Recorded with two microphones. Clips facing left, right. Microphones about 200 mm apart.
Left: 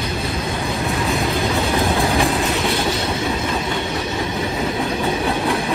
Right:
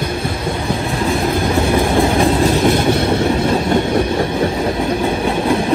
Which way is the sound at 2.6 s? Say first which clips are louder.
Right 7 dB; 55° right (ahead or behind).